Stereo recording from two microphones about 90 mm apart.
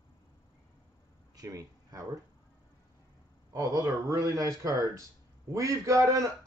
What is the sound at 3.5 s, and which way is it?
A man's voice, 40° right (ahead or behind).